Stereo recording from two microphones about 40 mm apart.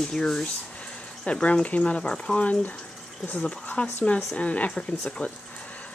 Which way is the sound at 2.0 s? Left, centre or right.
Left.